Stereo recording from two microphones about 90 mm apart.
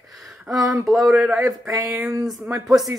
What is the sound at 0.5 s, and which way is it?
Speech, 40° right (ahead or behind).